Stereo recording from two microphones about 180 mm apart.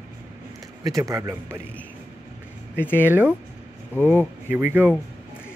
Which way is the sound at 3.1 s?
10° right (ahead or behind).